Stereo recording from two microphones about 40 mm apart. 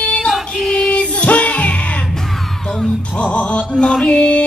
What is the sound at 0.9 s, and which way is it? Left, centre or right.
Music, left.